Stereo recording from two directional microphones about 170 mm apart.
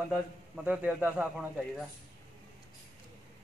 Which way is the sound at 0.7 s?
10° right (ahead or behind).